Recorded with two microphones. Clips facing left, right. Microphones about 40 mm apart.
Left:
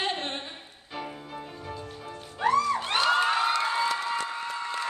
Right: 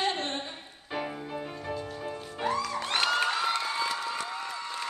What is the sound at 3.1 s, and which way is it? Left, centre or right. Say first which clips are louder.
Cheering: left 3 dB; left.